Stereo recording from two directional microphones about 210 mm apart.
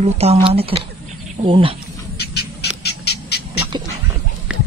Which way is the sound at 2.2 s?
50° left (ahead or behind).